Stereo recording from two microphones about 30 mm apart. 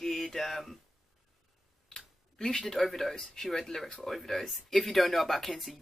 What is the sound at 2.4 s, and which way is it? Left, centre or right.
Speech, centre.